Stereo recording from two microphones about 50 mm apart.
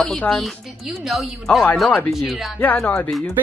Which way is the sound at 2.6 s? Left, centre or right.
Left.